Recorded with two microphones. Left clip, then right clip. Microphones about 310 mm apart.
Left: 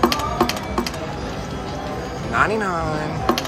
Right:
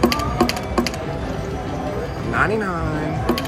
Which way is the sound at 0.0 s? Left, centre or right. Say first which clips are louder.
Even; centre.